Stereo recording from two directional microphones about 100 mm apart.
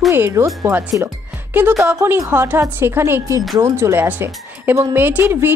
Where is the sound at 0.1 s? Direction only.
25° right (ahead or behind).